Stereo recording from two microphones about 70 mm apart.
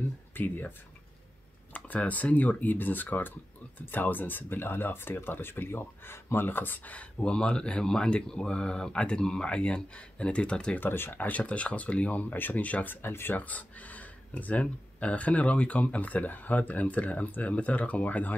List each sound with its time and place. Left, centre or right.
0.3 s speech: left
10.8 s speech: left